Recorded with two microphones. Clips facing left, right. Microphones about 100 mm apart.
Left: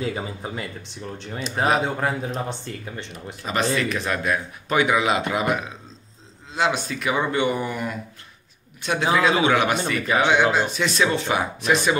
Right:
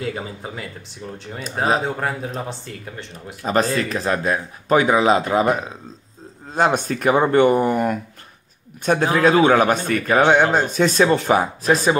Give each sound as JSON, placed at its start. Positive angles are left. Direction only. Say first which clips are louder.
{"t": 0.0, "sound": "speech", "louder": "even", "side_deg": 0}
{"t": 3.7, "sound": "speech", "louder": "right 3 dB", "side_deg": -35}
{"t": 6.5, "sound": "a man's voice", "louder": "right 5 dB", "side_deg": -45}